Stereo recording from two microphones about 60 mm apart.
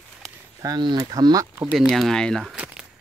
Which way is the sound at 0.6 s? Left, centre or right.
Right.